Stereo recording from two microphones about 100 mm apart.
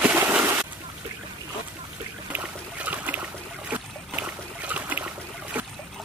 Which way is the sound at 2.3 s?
15° right (ahead or behind).